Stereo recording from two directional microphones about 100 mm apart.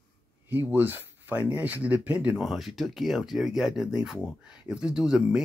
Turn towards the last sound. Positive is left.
turn(degrees=-5)  # may be behind; listen again after turning